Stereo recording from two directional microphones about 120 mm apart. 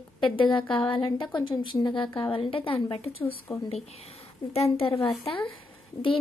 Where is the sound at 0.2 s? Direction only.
45° left (ahead or behind).